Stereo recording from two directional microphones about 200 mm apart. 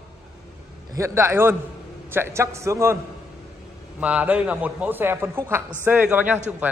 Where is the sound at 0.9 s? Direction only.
15° right (ahead or behind).